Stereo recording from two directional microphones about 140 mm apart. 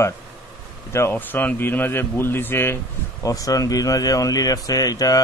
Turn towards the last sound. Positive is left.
turn(degrees=25)  # may be behind; listen again after turning